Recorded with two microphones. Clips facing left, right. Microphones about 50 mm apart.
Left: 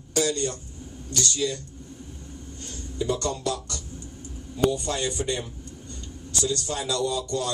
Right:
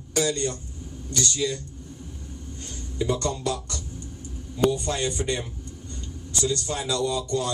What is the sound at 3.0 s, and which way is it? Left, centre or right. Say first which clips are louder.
Speech: right 1 dB; right.